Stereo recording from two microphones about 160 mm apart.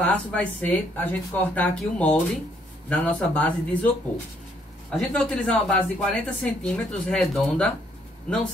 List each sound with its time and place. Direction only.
0.0 s speech: 5° left (ahead or behind)
4.9 s speech: 5° left (ahead or behind)